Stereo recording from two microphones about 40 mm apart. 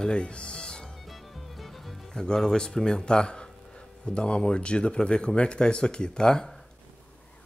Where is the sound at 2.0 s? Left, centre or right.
Centre.